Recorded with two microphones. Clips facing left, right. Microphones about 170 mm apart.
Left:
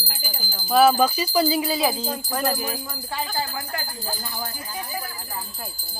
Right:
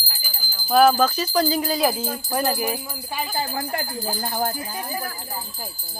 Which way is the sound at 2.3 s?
10° right (ahead or behind).